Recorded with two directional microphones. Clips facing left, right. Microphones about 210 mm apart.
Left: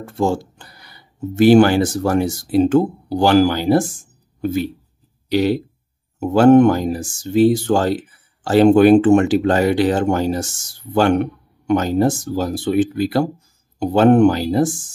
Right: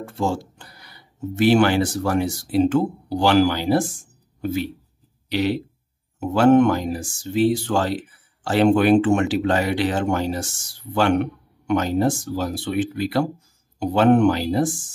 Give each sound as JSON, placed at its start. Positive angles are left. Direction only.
{"t": 0.0, "sound": "speech", "side_deg": 50}
{"t": 5.3, "sound": "speech", "side_deg": 45}